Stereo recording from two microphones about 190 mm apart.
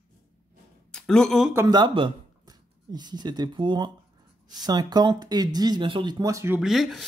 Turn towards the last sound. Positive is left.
turn(degrees=0)  # may be behind; listen again after turning